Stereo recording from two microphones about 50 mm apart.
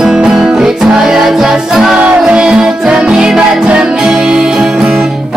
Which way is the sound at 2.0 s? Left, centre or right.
Right.